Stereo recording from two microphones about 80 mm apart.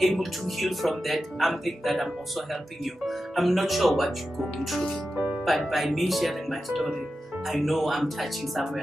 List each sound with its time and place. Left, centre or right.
0.0 s speech: centre
5.1 s music: centre
5.4 s speech: centre